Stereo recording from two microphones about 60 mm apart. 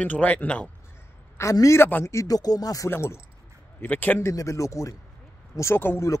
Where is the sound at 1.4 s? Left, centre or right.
Left.